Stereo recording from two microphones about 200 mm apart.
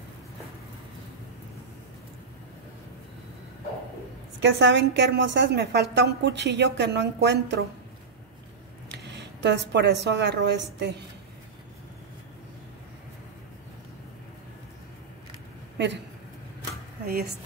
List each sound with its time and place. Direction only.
4.4 s a woman's voice: 65° right (ahead or behind)
8.8 s a sound: 60° right (ahead or behind)
9.7 s a woman's voice: 60° right (ahead or behind)
17.0 s speech: 50° right (ahead or behind)